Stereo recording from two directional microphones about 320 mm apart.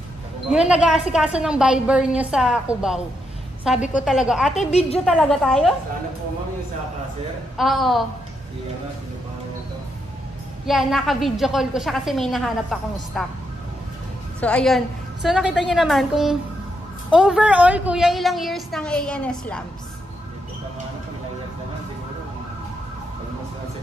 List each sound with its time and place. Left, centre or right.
0.7 s a woman's voice: centre
4.6 s a woman's voice: left
5.0 s a woman's voice: centre
7.5 s a woman's voice: centre
10.7 s a woman's voice: centre
14.4 s a woman's voice: centre